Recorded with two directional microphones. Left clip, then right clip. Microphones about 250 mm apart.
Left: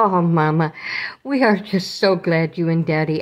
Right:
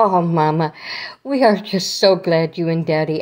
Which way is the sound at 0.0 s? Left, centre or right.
Centre.